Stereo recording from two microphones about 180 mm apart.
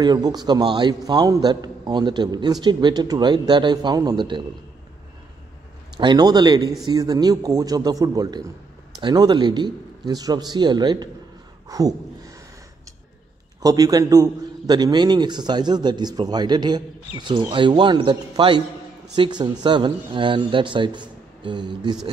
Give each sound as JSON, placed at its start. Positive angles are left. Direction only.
{"t": 0.0, "sound": "a man's voice", "side_deg": -20}
{"t": 5.9, "sound": "a man's voice", "side_deg": -25}
{"t": 13.6, "sound": "a man's voice", "side_deg": -20}